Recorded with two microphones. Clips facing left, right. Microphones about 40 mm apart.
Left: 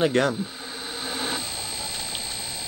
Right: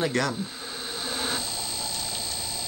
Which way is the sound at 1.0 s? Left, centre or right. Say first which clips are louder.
Left 1 dB; centre.